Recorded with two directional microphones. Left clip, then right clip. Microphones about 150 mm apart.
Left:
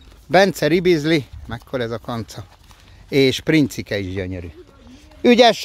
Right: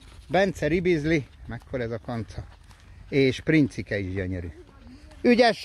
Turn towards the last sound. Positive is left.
turn(degrees=25)  # may be behind; listen again after turning